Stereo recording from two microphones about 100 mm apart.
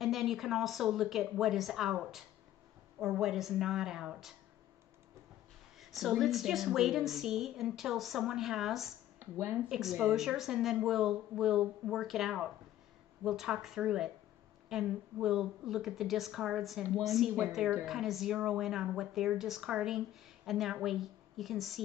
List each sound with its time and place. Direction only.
0.0 s a woman's voice: 5° right (ahead or behind)
5.8 s a woman's voice: centre (ahead or behind)
9.2 s speech: 20° right (ahead or behind)
9.7 s a woman's voice: centre (ahead or behind)